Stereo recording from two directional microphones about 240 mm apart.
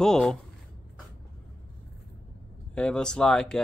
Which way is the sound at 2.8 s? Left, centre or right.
Centre.